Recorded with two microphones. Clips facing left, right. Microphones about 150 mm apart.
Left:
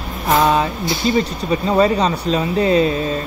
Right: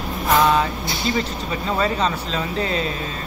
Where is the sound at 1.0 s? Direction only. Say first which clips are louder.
Left 6 dB; 15° left (ahead or behind).